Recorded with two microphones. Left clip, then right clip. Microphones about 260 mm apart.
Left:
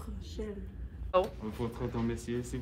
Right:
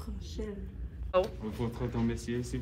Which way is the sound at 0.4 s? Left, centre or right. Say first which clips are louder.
Even; centre.